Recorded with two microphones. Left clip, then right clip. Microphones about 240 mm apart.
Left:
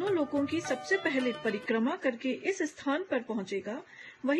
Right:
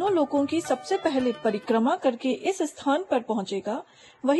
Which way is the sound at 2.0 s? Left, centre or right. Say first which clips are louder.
Right 6 dB; right.